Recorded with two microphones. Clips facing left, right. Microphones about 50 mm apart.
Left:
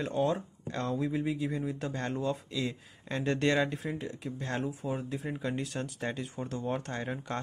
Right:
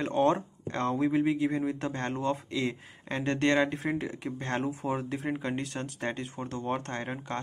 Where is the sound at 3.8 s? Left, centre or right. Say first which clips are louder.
Right 5 dB; right.